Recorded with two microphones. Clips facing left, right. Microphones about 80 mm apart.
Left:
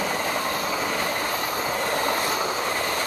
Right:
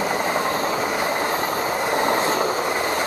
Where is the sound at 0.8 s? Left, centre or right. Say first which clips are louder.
Right 4 dB; centre.